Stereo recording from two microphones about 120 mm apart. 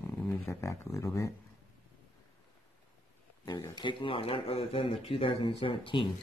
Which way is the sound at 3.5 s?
35° left (ahead or behind).